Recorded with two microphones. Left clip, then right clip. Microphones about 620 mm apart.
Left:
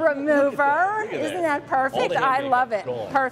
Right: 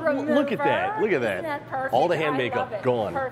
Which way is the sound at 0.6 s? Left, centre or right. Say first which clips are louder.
Left 3 dB; left.